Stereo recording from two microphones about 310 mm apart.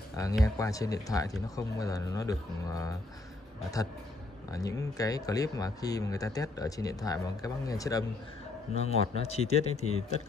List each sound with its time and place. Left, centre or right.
0.1 s speech: centre
4.5 s speech: centre